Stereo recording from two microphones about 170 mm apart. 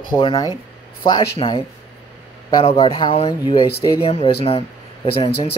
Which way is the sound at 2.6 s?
30° left (ahead or behind).